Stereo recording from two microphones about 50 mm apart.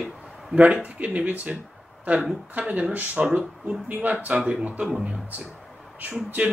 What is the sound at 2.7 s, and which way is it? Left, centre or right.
Speech, right.